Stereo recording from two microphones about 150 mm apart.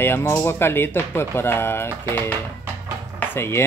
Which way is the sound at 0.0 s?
15° left (ahead or behind).